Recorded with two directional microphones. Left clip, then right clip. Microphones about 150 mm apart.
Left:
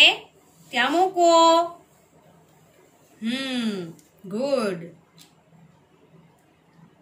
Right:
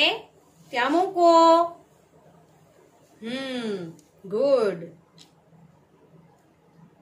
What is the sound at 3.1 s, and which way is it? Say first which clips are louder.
Speech: left 3 dB; 90° right.